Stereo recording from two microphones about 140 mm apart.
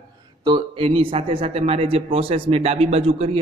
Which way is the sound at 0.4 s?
30° right (ahead or behind).